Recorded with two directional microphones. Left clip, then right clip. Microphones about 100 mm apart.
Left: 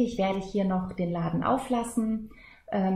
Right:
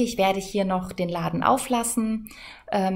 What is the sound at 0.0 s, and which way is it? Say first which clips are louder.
Speech: right 5 dB; 15° right (ahead or behind).